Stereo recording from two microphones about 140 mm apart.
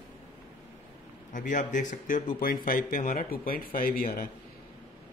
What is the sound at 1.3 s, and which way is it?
Speech, 65° left (ahead or behind).